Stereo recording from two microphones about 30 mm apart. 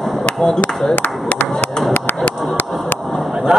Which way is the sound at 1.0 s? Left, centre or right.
Left.